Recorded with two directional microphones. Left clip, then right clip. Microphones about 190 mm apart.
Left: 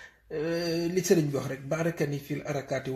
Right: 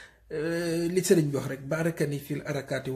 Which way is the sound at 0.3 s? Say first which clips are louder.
Even; 25° right (ahead or behind).